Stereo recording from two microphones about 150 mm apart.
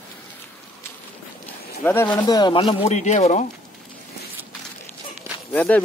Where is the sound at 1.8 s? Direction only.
10° left (ahead or behind).